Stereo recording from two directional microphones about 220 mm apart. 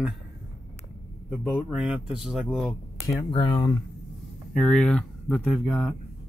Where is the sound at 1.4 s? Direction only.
Centre (ahead or behind).